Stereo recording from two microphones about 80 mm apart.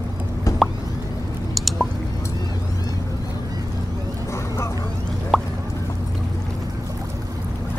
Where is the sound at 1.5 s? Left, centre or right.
Centre.